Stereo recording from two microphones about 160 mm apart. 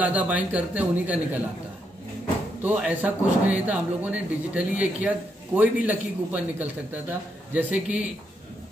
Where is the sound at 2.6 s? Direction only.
10° right (ahead or behind).